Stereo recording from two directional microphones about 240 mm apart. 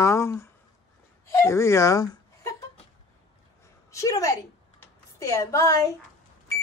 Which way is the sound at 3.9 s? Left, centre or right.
Centre.